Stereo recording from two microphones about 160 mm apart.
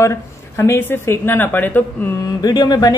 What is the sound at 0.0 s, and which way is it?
A woman's voice, 15° left (ahead or behind).